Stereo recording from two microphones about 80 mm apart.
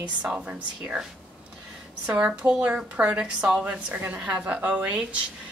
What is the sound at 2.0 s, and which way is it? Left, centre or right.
A woman's voice, centre.